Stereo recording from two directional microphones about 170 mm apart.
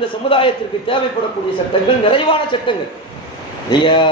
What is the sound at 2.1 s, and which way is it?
A man's voice, 30° left (ahead or behind).